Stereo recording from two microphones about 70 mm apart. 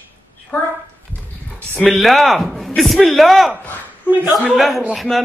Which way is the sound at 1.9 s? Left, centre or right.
Centre.